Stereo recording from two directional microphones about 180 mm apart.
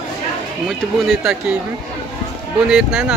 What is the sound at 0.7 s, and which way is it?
Speech, centre (ahead or behind).